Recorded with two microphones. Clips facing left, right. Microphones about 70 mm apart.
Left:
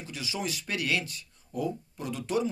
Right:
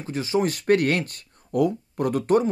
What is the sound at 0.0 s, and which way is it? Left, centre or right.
Speech, right.